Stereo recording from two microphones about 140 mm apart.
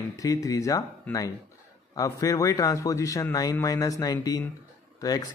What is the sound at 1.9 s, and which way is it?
Speech, 25° left (ahead or behind).